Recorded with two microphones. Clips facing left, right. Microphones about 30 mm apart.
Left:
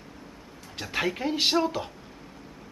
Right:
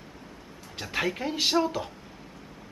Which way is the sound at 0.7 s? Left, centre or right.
Centre.